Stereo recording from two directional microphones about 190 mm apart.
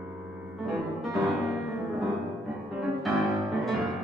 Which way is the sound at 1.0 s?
Centre (ahead or behind).